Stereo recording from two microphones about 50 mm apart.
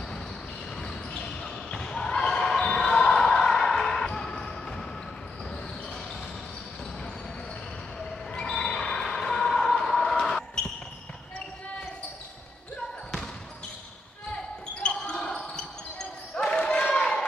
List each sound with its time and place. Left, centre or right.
0.7 s basketball bounce: centre
8.0 s basketball bounce: centre
14.8 s basketball bounce: centre